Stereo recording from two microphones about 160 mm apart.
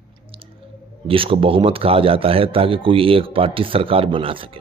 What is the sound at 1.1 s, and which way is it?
Speech, 35° right (ahead or behind).